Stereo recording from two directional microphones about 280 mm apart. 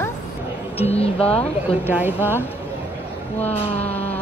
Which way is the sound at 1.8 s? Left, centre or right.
Centre.